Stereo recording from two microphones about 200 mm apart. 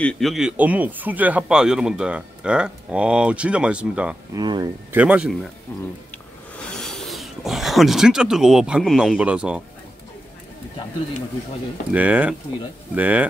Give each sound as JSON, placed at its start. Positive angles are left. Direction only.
{"t": 0.0, "sound": "speech", "side_deg": 5}
{"t": 4.4, "sound": "speech", "side_deg": -20}
{"t": 4.9, "sound": "speech", "side_deg": -5}
{"t": 11.9, "sound": "speech", "side_deg": -5}